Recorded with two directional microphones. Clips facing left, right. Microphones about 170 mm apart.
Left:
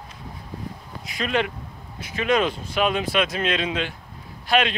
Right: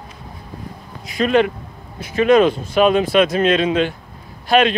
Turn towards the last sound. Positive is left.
turn(degrees=-45)  # may be behind; listen again after turning